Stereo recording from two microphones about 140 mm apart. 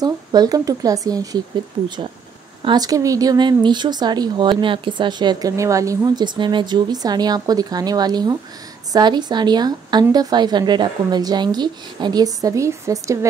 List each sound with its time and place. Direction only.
0.0 s speech: 25° right (ahead or behind)
2.6 s speech: 30° right (ahead or behind)